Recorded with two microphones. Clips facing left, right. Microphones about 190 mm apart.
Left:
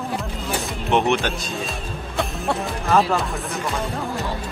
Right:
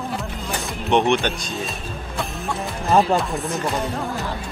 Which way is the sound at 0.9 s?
5° left (ahead or behind).